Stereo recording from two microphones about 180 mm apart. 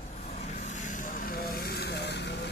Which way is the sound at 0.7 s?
45° left (ahead or behind).